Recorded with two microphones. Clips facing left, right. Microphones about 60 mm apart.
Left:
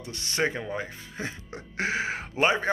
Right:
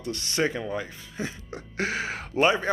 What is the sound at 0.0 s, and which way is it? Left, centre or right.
Speech, left.